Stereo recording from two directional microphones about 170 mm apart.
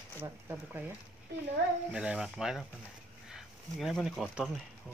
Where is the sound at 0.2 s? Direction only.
15° right (ahead or behind).